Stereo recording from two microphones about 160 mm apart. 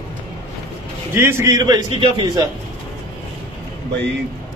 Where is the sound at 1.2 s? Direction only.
15° right (ahead or behind).